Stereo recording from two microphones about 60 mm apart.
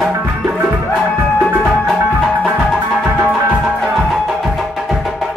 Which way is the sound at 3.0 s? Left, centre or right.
Right.